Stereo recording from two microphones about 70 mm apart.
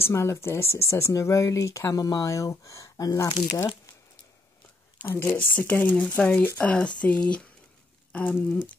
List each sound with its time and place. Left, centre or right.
0.0 s speech: left
5.0 s speech: left
5.4 s speech: left